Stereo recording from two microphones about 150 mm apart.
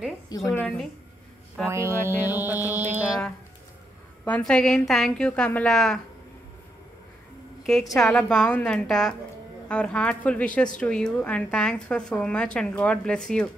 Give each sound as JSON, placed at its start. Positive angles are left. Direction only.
{"t": 0.3, "sound": "a woman's voice", "side_deg": 25}
{"t": 1.7, "sound": "music", "side_deg": -20}
{"t": 4.2, "sound": "a woman's voice", "side_deg": 5}
{"t": 7.9, "sound": "a woman's voice", "side_deg": 5}